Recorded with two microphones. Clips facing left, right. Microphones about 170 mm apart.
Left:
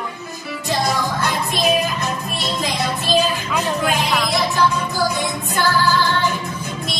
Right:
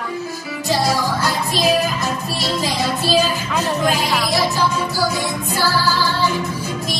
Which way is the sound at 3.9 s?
5° right (ahead or behind).